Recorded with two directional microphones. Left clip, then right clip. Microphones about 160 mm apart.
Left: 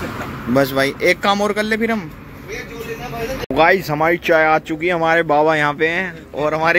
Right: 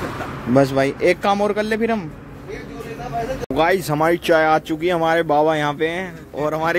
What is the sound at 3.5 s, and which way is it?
Speech, 10° right (ahead or behind).